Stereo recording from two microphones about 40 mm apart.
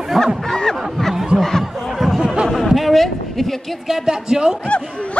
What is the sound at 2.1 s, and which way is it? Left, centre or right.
Music, centre.